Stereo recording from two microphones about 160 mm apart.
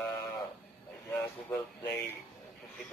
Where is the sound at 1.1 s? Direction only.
15° left (ahead or behind).